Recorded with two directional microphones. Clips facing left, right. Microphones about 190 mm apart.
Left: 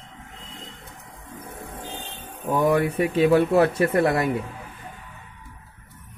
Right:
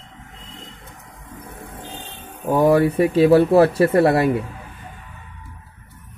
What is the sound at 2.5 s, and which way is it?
Speech, 35° right (ahead or behind).